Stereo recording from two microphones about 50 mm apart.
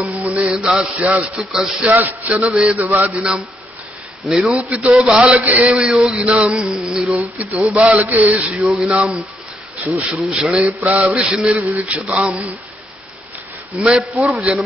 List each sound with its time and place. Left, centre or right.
0.0 s music: right
0.9 s mantra: right
1.4 s speech: centre
1.8 s a man's voice: right
2.5 s mantra: right
2.8 s a man's voice: right
4.3 s speech: centre
4.6 s mantra: right
5.3 s mantra: right; by 7.2 s centre
7.2 s mantra: right
10.3 s speech: centre
10.6 s mantra: right
13.8 s mantra: right